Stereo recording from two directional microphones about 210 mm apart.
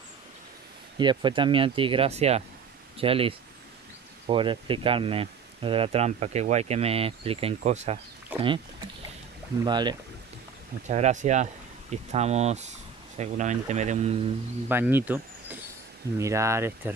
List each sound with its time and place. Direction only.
0.9 s speech: 20° right (ahead or behind)
8.3 s a sound: 10° right (ahead or behind)
9.7 s speech: 20° right (ahead or behind)
10.9 s speech: 35° right (ahead or behind)
14.7 s speech: 10° right (ahead or behind)
16.2 s speech: 15° right (ahead or behind)